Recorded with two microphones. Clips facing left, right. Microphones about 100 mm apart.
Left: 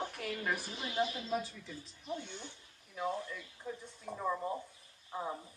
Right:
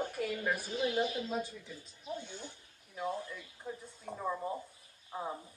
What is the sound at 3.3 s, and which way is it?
Speech, 15° right (ahead or behind).